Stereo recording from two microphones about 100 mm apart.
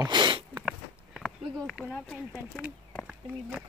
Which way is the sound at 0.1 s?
50° right (ahead or behind).